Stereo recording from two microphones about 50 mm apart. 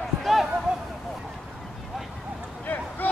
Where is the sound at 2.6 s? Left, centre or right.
Left.